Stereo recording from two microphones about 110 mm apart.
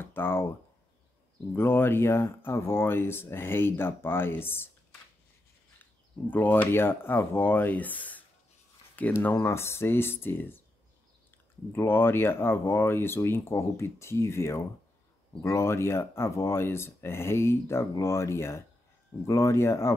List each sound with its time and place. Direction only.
0.0 s speech: 20° left (ahead or behind)
1.5 s speech: 20° left (ahead or behind)
6.3 s speech: 15° left (ahead or behind)
11.7 s speech: 20° left (ahead or behind)